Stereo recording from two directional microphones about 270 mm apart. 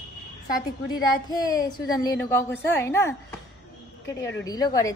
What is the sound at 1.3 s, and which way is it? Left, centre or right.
A woman's voice, centre.